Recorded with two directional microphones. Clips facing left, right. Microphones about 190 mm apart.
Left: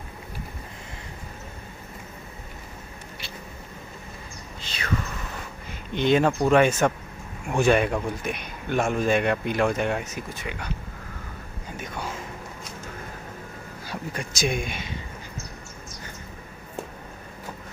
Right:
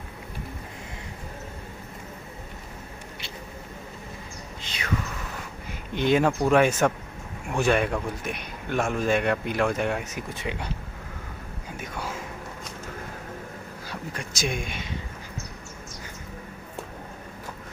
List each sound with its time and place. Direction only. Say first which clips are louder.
4.6 s a sound: left 2 dB; 15° right (ahead or behind)
5.9 s a man's voice: left 1 dB; 5° right (ahead or behind)
10.4 s speech: right 2 dB; 25° right (ahead or behind)
11.7 s speech: left 1 dB; 5° right (ahead or behind)
14.1 s a man's voice: left 3 dB; 5° left (ahead or behind)